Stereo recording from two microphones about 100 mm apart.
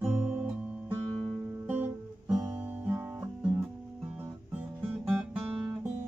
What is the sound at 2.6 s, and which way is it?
Guitar, 15° right (ahead or behind).